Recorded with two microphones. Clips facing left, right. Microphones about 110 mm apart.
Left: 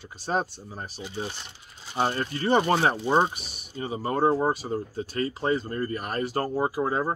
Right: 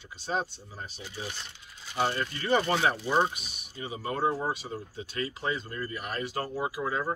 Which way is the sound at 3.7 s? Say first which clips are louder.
Left 6 dB; 40° left (ahead or behind).